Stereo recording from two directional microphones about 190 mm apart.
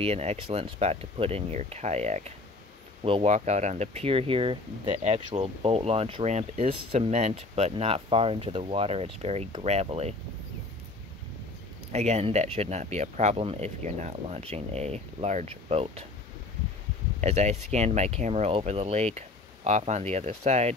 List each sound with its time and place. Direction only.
0.0 s speech: 35° right (ahead or behind)
11.9 s speech: 35° right (ahead or behind)
17.2 s speech: 35° right (ahead or behind)